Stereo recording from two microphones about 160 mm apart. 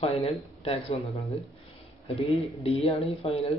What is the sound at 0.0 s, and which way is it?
Speech, 35° left (ahead or behind).